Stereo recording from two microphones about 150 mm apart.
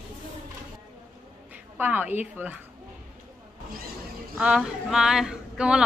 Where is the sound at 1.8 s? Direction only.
10° right (ahead or behind).